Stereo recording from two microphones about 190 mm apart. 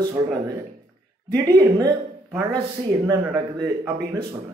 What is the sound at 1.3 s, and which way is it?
Speech, 15° right (ahead or behind).